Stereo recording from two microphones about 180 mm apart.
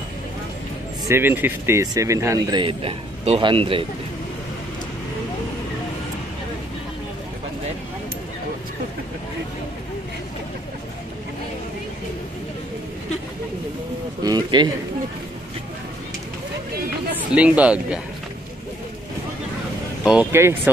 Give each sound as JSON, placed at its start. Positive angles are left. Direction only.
{"t": 1.0, "sound": "speech", "side_deg": -15}
{"t": 14.2, "sound": "a sound", "side_deg": -25}
{"t": 17.3, "sound": "speech", "side_deg": -5}
{"t": 20.1, "sound": "speech", "side_deg": -10}